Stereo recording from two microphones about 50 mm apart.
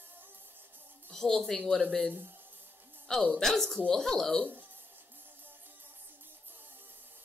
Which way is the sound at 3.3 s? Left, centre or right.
Centre.